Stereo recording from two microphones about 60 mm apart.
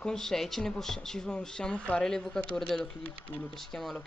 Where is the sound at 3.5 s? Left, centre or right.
Centre.